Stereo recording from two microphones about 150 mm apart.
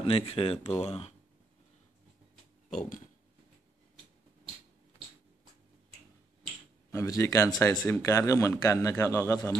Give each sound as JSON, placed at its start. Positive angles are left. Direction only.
{"t": 0.0, "sound": "speech", "side_deg": 35}
{"t": 2.7, "sound": "a sound", "side_deg": 55}
{"t": 6.9, "sound": "speech", "side_deg": 20}